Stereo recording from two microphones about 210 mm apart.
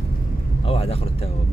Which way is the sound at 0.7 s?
25° left (ahead or behind).